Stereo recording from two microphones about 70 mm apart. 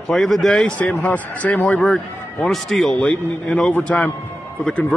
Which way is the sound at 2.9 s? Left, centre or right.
Centre.